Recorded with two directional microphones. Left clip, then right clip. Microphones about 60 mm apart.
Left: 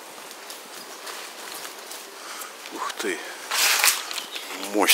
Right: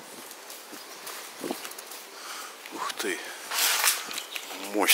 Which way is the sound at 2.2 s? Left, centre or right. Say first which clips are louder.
Left 2 dB; centre.